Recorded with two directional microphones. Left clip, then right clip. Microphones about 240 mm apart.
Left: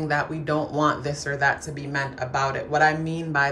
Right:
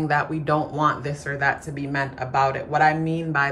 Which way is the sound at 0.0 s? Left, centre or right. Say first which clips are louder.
Right 2 dB; centre.